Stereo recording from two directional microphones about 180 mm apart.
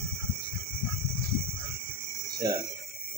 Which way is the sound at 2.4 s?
20° right (ahead or behind).